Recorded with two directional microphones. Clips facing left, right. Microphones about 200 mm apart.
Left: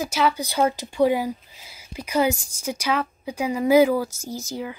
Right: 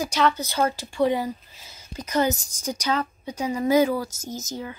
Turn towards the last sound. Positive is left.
turn(degrees=10)  # may be behind; listen again after turning